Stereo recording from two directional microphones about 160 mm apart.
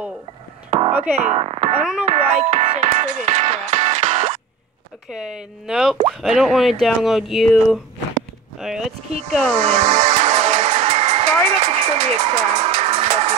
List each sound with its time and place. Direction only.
0.7 s music: 35° right (ahead or behind)
1.1 s speech: 40° right (ahead or behind)
1.8 s speech: 5° right (ahead or behind)
2.0 s music: 40° right (ahead or behind)
5.1 s speech: 5° right (ahead or behind)
9.6 s music: 45° right (ahead or behind)